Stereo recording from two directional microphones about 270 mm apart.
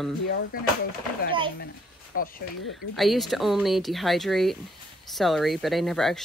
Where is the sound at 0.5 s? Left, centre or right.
Left.